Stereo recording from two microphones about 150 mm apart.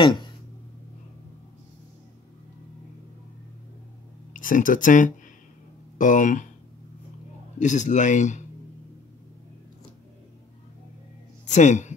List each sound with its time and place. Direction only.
0.0 s speech: 30° left (ahead or behind)
4.3 s speech: 60° left (ahead or behind)
7.5 s speech: 55° left (ahead or behind)
11.4 s a woman's voice: 50° left (ahead or behind)